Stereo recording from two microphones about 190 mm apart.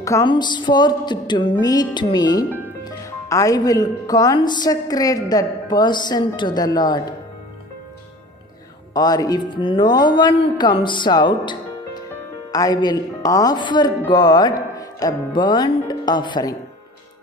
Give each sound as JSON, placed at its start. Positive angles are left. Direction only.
{"t": 0.0, "sound": "a woman's voice", "side_deg": 20}
{"t": 8.9, "sound": "a woman's voice", "side_deg": 20}